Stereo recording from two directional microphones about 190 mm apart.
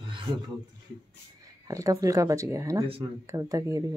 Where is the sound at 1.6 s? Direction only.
15° right (ahead or behind).